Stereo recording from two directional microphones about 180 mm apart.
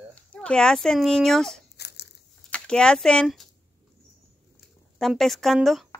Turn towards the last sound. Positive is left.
turn(degrees=0)  # may be behind; listen again after turning